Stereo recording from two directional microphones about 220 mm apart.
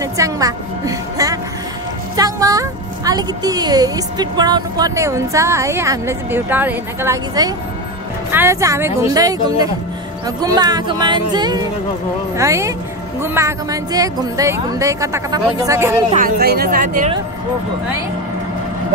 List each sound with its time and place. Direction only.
0.0 s a woman's voice: 15° right (ahead or behind)
16.3 s speech: 45° right (ahead or behind)